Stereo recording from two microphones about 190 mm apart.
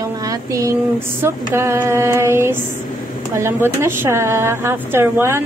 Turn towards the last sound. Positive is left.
turn(degrees=-15)  # may be behind; listen again after turning